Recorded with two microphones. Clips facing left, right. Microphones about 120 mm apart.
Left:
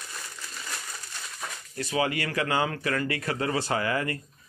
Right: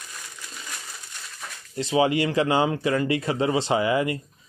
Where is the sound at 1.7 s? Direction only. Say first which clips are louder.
Right 7 dB; 25° right (ahead or behind).